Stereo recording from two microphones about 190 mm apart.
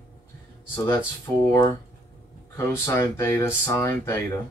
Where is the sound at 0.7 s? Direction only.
20° left (ahead or behind).